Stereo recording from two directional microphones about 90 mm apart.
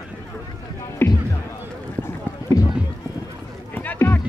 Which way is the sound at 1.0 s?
25° left (ahead or behind).